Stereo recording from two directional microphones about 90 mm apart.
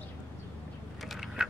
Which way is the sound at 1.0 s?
Centre (ahead or behind).